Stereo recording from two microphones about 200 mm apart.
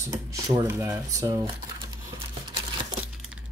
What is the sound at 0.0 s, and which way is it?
Speech, 15° right (ahead or behind).